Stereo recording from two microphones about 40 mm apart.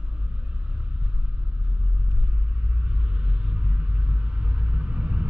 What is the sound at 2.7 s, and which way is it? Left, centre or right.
Rumble, right.